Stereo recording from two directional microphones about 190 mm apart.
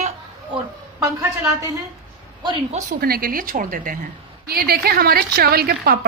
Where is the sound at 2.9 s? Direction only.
50° right (ahead or behind).